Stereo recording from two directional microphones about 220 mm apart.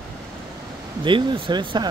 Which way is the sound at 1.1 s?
20° right (ahead or behind).